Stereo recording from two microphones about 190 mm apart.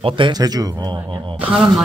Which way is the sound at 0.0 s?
25° right (ahead or behind).